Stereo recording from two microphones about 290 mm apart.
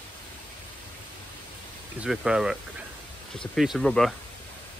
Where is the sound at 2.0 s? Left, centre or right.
Centre.